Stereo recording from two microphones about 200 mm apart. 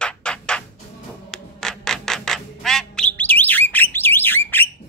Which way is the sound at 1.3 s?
Centre (ahead or behind).